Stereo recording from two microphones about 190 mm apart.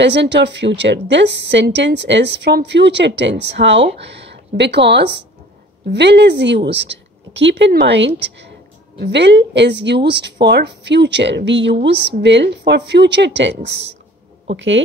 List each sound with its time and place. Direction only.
0.0 s a woman's voice: 65° right (ahead or behind)